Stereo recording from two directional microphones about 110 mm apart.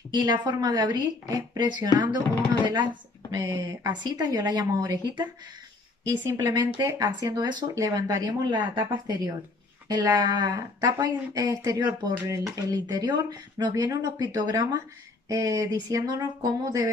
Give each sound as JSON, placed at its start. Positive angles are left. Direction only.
{"t": 0.1, "sound": "speech", "side_deg": -40}
{"t": 6.0, "sound": "speech", "side_deg": -30}
{"t": 6.4, "sound": "speech", "side_deg": -40}
{"t": 7.7, "sound": "speech", "side_deg": -30}
{"t": 13.8, "sound": "speech", "side_deg": -30}